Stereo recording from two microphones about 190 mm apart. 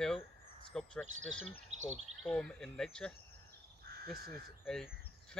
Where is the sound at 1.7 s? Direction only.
35° right (ahead or behind).